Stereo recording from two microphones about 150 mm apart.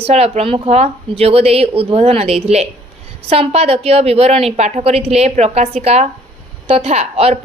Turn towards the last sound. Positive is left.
turn(degrees=-45)  # may be behind; listen again after turning